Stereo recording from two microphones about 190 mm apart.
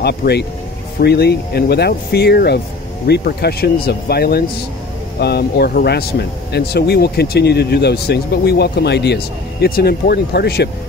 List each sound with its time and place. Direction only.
0.0 s speech: 60° left (ahead or behind)